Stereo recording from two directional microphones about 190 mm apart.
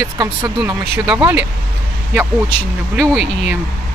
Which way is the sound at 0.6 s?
5° right (ahead or behind).